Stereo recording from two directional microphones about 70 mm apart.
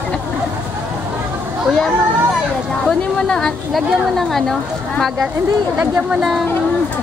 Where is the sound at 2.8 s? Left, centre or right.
Centre.